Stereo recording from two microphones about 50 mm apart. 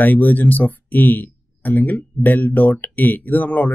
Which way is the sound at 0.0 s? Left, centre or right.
Left.